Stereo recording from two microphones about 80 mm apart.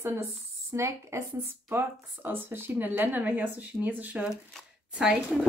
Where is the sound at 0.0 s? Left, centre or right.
Right.